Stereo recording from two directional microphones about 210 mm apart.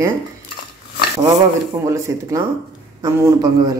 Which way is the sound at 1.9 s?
15° right (ahead or behind).